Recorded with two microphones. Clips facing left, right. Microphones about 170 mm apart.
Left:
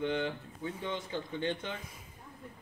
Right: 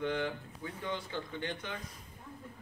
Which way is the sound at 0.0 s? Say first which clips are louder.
Left 1 dB; 25° left (ahead or behind).